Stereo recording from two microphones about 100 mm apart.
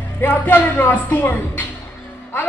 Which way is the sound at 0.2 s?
20° left (ahead or behind).